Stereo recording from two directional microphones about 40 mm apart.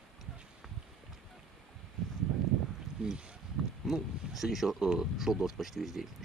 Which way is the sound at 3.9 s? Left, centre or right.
Centre.